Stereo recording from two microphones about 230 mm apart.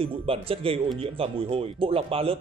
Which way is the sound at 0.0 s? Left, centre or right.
Right.